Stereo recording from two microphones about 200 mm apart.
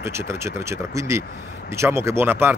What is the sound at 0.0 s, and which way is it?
Speech, 15° right (ahead or behind).